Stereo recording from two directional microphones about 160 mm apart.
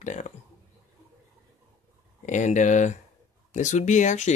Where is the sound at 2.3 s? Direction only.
50° left (ahead or behind).